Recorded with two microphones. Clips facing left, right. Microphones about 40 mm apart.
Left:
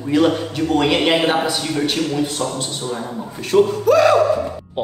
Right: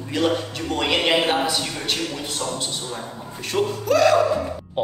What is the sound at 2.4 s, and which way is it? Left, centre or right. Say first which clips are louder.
Speech: left 4 dB; left.